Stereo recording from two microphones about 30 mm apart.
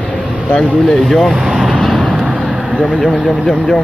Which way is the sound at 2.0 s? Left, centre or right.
Right.